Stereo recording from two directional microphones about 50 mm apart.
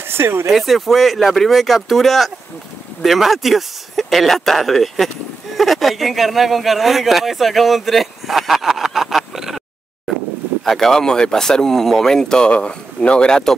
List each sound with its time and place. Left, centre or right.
0.1 s speech: right
0.5 s speech: centre
10.6 s speech: centre